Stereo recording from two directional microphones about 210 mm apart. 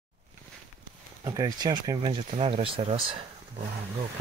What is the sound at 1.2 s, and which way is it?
Speech, 15° right (ahead or behind).